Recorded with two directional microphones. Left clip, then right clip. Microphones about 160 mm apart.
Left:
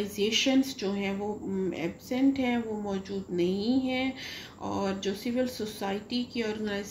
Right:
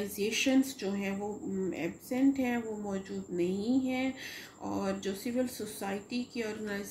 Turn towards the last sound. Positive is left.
turn(degrees=15)  # may be behind; listen again after turning